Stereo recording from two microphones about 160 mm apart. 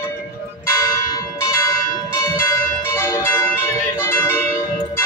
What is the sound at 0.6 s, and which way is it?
Church bell, 15° left (ahead or behind).